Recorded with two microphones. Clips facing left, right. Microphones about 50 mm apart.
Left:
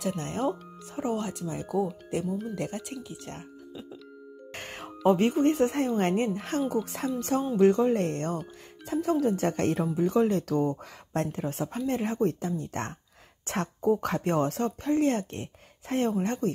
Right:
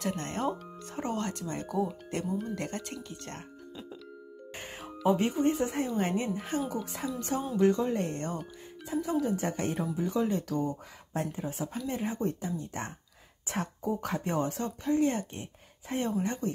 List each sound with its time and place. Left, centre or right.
0.0 s speech: centre
4.6 s music: left
4.8 s speech: left
9.9 s speech: left